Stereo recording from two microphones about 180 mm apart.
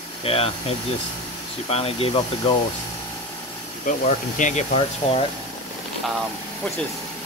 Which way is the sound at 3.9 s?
45° left (ahead or behind).